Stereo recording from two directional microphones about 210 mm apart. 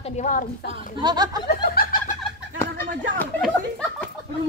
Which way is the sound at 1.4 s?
45° left (ahead or behind).